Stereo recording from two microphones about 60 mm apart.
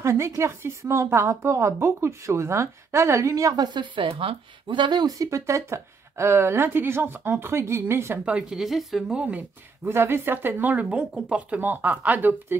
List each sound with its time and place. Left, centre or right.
0.0 s a woman's voice: right
5.0 s speech: right
8.3 s speech: centre
8.5 s speech: centre
9.0 s speech: centre
9.8 s speech: right; by 11.6 s centre
11.6 s speech: right